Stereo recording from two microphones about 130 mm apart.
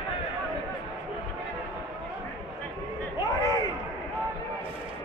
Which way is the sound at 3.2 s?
25° left (ahead or behind).